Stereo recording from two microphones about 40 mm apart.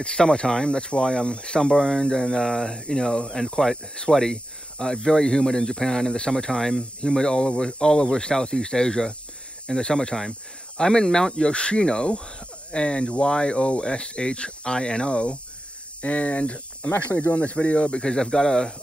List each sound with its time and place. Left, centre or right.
0.0 s speech: left
16.9 s speech: left
17.4 s speech: left; by 18.7 s centre